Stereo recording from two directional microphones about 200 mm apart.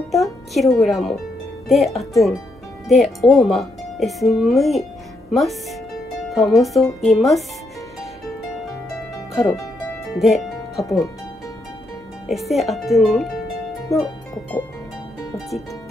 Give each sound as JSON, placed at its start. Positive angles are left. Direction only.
{"t": 0.1, "sound": "speech", "side_deg": 0}
{"t": 9.3, "sound": "speech", "side_deg": 0}
{"t": 10.1, "sound": "music", "side_deg": 0}
{"t": 12.3, "sound": "speech", "side_deg": 0}